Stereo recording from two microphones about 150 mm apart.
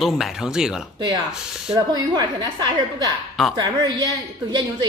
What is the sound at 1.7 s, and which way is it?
A woman's voice, 25° right (ahead or behind).